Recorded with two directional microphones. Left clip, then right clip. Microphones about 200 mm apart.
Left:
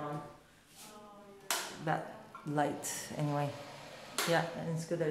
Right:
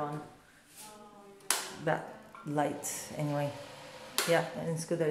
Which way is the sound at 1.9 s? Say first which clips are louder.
Right 3 dB; 15° right (ahead or behind).